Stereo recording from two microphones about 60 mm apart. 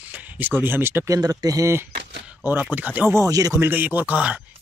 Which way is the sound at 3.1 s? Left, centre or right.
Right.